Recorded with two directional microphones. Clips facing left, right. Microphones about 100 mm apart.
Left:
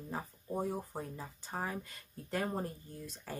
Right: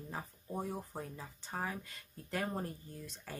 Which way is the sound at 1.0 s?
30° left (ahead or behind).